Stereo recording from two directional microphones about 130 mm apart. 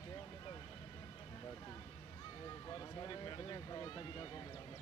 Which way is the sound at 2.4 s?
35° left (ahead or behind).